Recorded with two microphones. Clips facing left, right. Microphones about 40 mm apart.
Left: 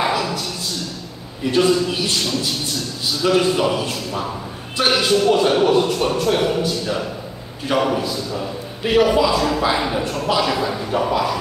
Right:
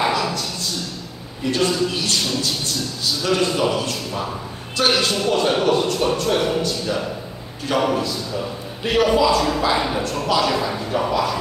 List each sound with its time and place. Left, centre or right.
0.0 s a sound: centre
1.4 s a man's voice: centre
3.2 s a man's voice: centre